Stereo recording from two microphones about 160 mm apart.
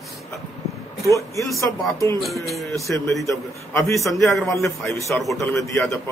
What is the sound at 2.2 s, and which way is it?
Music, centre (ahead or behind).